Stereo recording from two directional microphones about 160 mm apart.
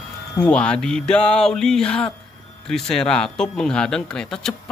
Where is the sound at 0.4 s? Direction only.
5° left (ahead or behind).